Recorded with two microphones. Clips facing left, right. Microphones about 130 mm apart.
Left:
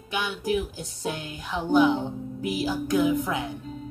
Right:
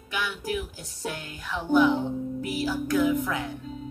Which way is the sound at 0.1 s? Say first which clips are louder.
Left 4 dB; 25° left (ahead or behind).